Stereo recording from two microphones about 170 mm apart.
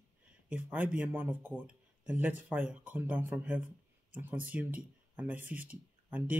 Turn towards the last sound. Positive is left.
turn(degrees=-10)  # may be behind; listen again after turning